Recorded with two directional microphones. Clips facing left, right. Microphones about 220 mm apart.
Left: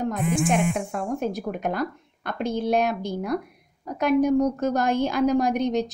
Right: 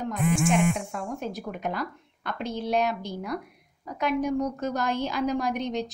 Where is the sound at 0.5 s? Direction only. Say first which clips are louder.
Left 1 dB; 55° left (ahead or behind).